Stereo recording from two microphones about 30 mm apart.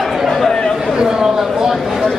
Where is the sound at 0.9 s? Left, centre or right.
Right.